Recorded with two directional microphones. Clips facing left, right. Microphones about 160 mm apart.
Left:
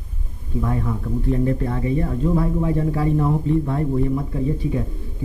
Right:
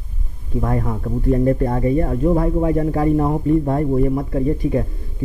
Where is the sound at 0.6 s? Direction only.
45° right (ahead or behind).